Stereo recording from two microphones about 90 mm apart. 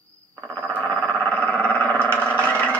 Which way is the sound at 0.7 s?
10° left (ahead or behind).